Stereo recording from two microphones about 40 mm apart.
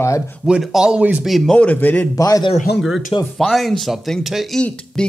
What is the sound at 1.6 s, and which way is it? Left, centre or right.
Speech, left.